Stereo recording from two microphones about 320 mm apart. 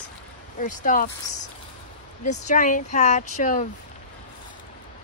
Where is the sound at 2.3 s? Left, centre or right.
Left.